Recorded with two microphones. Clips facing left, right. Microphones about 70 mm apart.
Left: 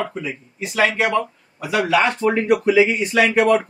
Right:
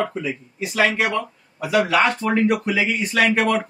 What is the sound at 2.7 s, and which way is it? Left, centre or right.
Speech, left.